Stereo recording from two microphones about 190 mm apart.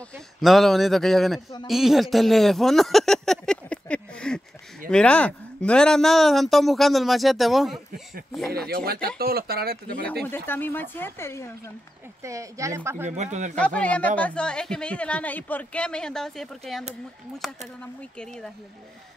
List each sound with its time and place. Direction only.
0.1 s a man's voice: centre (ahead or behind)
8.5 s speech: 55° right (ahead or behind)
10.3 s speech: 10° left (ahead or behind)
12.2 s speech: 15° right (ahead or behind)
13.0 s speech: 35° right (ahead or behind)
13.6 s a man's voice: 5° left (ahead or behind)
18.1 s a man's voice: 5° left (ahead or behind)